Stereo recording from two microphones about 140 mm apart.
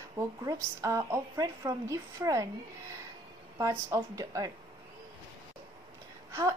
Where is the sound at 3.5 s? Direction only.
25° right (ahead or behind).